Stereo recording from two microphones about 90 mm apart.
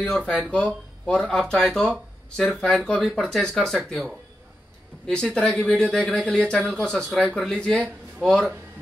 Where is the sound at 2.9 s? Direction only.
5° left (ahead or behind).